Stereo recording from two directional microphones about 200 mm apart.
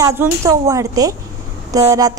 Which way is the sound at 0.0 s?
15° right (ahead or behind).